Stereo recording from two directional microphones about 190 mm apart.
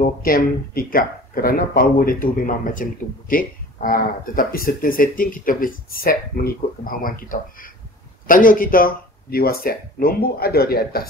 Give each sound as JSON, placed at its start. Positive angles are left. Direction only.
{"t": 0.0, "sound": "speech", "side_deg": 50}